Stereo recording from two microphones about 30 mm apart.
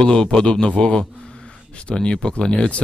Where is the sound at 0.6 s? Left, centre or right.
Left.